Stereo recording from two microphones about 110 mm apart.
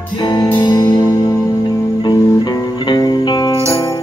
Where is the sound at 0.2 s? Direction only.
40° left (ahead or behind).